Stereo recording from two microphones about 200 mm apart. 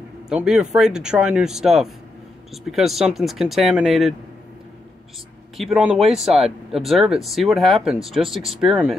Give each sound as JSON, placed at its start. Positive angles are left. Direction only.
{"t": 0.3, "sound": "speech", "side_deg": -5}
{"t": 5.6, "sound": "speech", "side_deg": 0}